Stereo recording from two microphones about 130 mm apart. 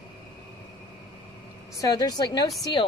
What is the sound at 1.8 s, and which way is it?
Speech, 30° left (ahead or behind).